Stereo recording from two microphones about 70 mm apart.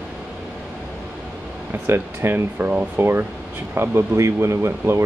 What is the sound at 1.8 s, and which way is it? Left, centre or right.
Speech, right.